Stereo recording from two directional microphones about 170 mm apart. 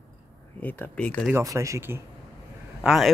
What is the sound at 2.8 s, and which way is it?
Speech, centre (ahead or behind).